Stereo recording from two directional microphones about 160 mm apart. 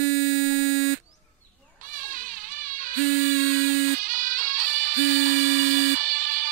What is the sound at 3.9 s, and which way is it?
Music, 55° right (ahead or behind).